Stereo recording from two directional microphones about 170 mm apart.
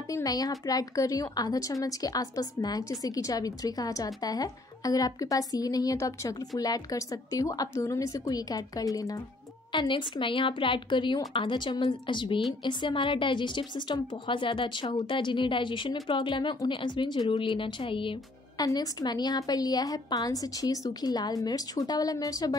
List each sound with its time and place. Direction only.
0.1 s a woman's voice: 20° left (ahead or behind)